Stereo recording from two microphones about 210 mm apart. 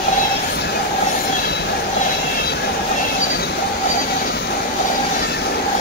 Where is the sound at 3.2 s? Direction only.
50° left (ahead or behind).